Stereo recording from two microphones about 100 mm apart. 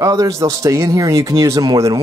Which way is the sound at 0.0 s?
35° right (ahead or behind).